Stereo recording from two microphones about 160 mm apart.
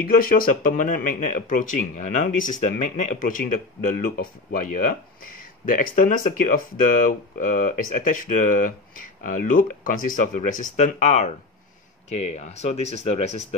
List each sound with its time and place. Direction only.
0.0 s speech: 65° left (ahead or behind); by 13.6 s 45° left (ahead or behind)